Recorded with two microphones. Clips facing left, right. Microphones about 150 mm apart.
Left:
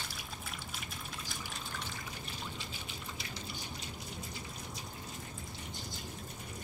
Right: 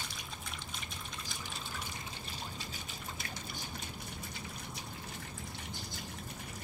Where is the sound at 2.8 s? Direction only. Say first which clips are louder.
Even; 45° right (ahead or behind).